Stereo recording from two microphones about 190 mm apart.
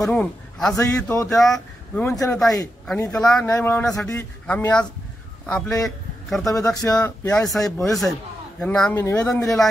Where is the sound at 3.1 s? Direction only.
5° left (ahead or behind).